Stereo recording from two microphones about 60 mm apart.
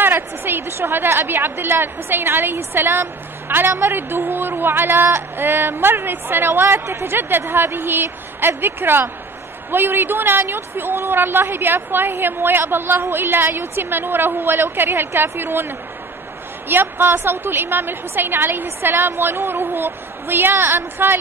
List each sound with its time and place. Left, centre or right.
0.0 s a woman's voice: right